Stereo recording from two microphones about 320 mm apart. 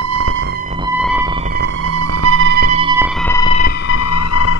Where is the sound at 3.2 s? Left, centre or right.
Centre.